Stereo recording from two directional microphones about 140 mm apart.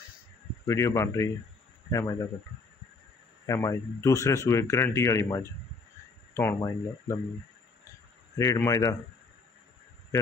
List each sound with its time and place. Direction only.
0.7 s a man's voice: 20° left (ahead or behind)
3.4 s a man's voice: 20° left (ahead or behind)
8.4 s a man's voice: 25° left (ahead or behind)